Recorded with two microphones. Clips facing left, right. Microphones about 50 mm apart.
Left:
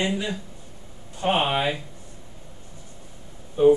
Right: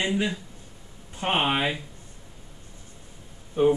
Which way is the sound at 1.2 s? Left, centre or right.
Right.